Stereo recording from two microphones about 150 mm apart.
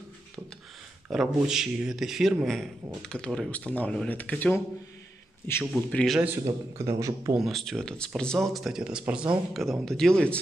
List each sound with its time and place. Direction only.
1.1 s speech: 5° right (ahead or behind)
5.8 s a man's voice: 5° left (ahead or behind)
6.1 s a man's voice: 10° right (ahead or behind)
7.3 s speech: centre (ahead or behind)